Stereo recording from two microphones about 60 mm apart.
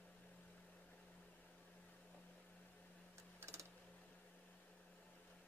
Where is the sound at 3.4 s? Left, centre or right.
Right.